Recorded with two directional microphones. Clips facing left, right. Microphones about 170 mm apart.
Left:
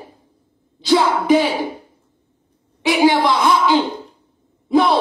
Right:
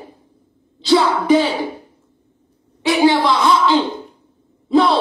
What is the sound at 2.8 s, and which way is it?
A man's voice, 15° left (ahead or behind).